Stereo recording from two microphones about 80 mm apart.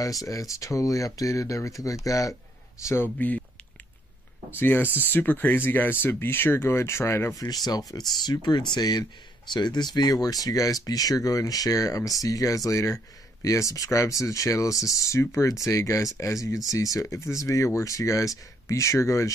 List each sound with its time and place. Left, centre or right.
0.0 s speech: left
4.5 s speech: left
7.3 s speech: left